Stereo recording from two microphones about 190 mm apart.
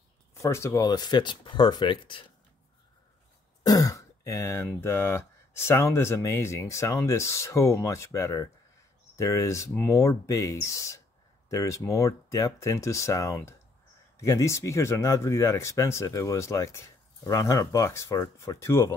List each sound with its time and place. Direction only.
0.3 s speech: 15° left (ahead or behind)
3.6 s speech: 20° left (ahead or behind)